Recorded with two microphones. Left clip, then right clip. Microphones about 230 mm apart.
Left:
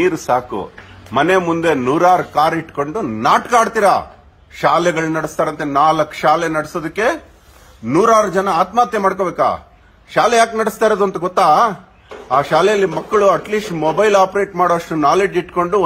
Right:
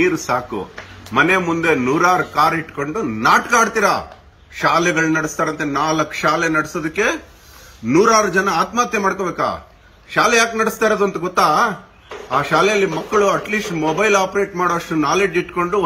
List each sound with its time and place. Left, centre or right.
0.0 s a man's voice: left
8.3 s a man's voice: left